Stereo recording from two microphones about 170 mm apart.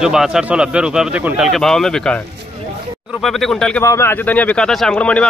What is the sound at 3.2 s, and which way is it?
Speech, centre (ahead or behind).